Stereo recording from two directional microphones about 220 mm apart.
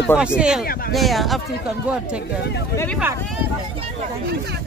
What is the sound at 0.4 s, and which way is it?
Speech, 5° right (ahead or behind).